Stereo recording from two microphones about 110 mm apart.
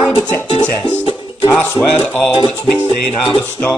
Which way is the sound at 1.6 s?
15° left (ahead or behind).